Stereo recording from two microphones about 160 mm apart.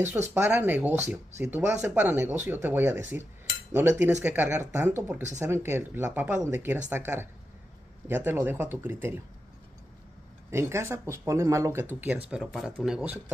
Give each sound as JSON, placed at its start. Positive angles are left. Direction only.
{"t": 0.0, "sound": "speech", "side_deg": -10}
{"t": 8.3, "sound": "speech", "side_deg": -15}
{"t": 10.5, "sound": "speech", "side_deg": -15}